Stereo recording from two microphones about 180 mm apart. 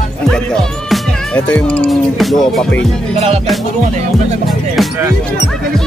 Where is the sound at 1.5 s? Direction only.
5° left (ahead or behind).